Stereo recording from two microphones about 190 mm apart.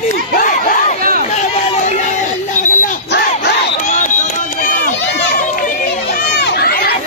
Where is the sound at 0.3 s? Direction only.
45° left (ahead or behind).